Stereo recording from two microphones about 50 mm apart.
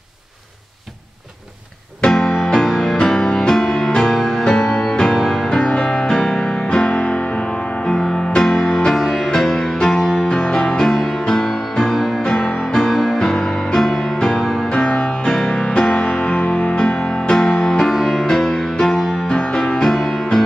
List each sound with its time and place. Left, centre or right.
2.0 s music: centre; by 7.2 s left
7.9 s music: centre; by 16.7 s left
16.7 s music: centre
17.9 s music: centre
18.3 s music: centre
19.9 s music: centre